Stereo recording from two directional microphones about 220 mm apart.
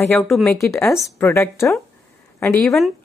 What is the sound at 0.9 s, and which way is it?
Speech, centre (ahead or behind).